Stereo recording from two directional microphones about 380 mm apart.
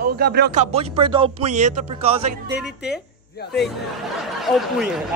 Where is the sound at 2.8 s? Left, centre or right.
Left.